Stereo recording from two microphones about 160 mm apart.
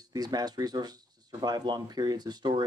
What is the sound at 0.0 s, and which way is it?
Speech, 25° right (ahead or behind).